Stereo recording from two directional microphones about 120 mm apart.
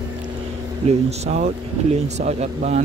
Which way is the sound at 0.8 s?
65° right (ahead or behind).